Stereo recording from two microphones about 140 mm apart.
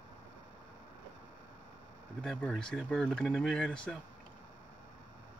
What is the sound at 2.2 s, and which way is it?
Speech, 5° left (ahead or behind).